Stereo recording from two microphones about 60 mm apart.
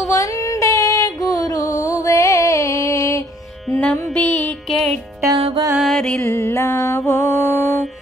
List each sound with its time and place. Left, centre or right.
0.1 s female singing: left
4.1 s music: left
4.6 s music: centre
5.2 s music: right
5.8 s music: centre
6.2 s music: left